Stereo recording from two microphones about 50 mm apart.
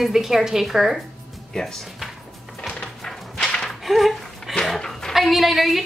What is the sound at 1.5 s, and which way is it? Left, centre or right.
Speech, centre.